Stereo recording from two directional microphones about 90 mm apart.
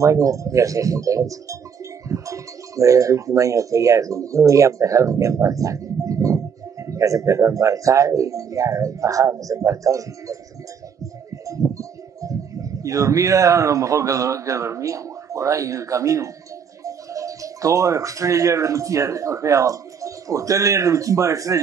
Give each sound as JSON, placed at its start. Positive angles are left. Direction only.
{"t": 0.0, "sound": "speech", "side_deg": -35}
{"t": 11.4, "sound": "speech", "side_deg": -40}